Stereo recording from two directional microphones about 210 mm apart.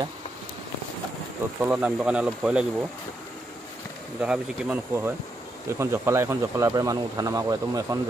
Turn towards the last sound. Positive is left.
turn(degrees=-15)  # may be behind; listen again after turning